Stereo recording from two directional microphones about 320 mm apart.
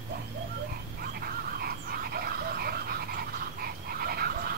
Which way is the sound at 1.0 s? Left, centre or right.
Right.